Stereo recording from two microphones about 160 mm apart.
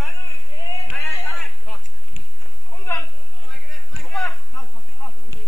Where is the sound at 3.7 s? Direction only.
Centre (ahead or behind).